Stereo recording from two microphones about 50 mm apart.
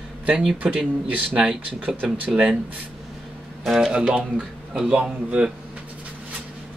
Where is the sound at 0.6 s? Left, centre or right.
Right.